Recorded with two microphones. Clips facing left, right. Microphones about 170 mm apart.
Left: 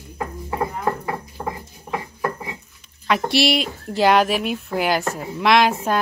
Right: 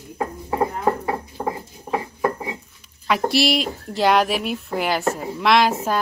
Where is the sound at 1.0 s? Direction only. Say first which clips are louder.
Right 3 dB; 25° right (ahead or behind).